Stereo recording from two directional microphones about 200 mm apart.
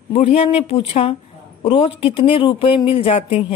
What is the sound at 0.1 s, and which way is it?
Speech, 30° left (ahead or behind).